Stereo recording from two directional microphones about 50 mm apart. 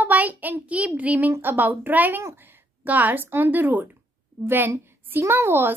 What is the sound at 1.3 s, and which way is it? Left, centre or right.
A child's voice, right.